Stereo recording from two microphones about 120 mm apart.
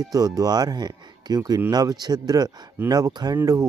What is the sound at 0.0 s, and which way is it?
Speech, 30° right (ahead or behind).